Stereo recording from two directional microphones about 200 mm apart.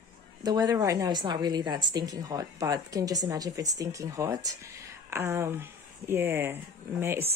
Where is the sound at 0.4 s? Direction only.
20° right (ahead or behind).